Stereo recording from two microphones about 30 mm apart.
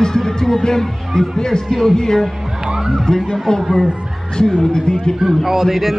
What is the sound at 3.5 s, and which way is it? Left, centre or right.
Speech, centre.